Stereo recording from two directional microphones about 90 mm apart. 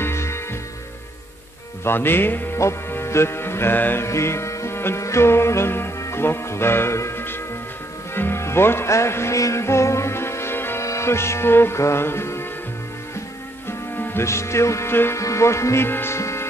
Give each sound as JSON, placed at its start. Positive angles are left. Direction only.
{"t": 0.0, "sound": "music", "side_deg": 30}
{"t": 1.9, "sound": "speech", "side_deg": 25}
{"t": 8.1, "sound": "music", "side_deg": 25}
{"t": 13.7, "sound": "speech", "side_deg": 25}